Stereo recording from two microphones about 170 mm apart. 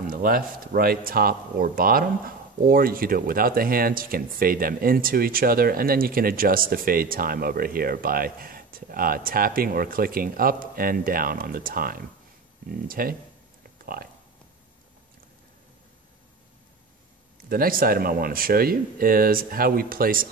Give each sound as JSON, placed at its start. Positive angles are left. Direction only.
{"t": 0.0, "sound": "speech", "side_deg": -60}
{"t": 17.5, "sound": "speech", "side_deg": -60}